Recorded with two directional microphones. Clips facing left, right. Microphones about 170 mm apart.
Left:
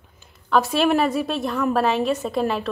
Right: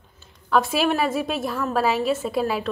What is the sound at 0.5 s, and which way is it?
A woman's voice, centre (ahead or behind).